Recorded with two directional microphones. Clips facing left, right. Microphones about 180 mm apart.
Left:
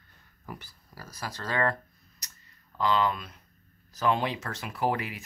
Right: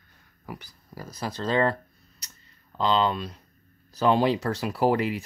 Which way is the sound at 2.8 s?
25° right (ahead or behind).